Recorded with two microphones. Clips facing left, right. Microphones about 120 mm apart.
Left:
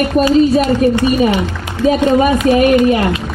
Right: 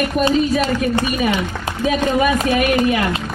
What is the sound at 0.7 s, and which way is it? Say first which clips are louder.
A woman's voice: left 7 dB; 30° left (ahead or behind).